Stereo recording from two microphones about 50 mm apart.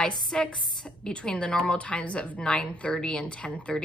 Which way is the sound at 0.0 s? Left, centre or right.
Centre.